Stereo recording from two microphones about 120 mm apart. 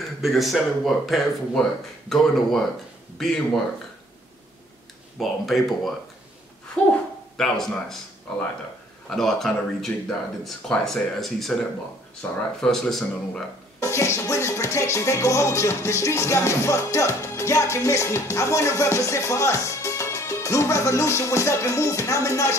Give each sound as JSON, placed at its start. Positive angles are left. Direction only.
{"t": 0.2, "sound": "speech", "side_deg": 0}
{"t": 5.2, "sound": "speech", "side_deg": 0}
{"t": 7.3, "sound": "speech", "side_deg": 5}
{"t": 12.2, "sound": "speech", "side_deg": 10}
{"t": 13.7, "sound": "music", "side_deg": 25}